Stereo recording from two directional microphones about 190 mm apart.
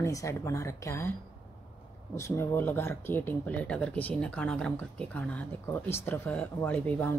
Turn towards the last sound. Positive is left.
turn(degrees=10)  # may be behind; listen again after turning